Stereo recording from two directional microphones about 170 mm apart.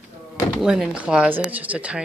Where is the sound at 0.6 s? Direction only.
5° right (ahead or behind).